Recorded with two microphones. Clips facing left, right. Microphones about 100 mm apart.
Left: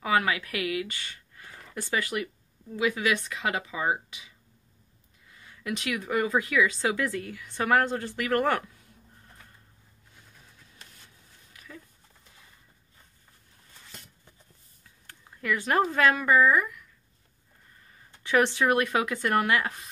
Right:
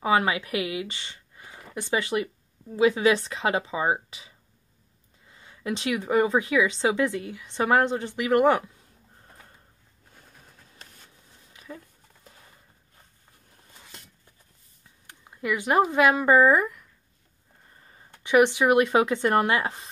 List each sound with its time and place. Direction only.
0.0 s speech: 25° right (ahead or behind)
5.3 s speech: 25° right (ahead or behind)
11.5 s a sound: 25° right (ahead or behind)
15.0 s speech: 15° right (ahead or behind)
17.8 s a sound: 30° right (ahead or behind)
18.3 s speech: 15° right (ahead or behind)